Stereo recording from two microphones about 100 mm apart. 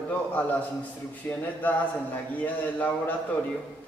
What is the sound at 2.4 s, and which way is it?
Speech, 15° left (ahead or behind).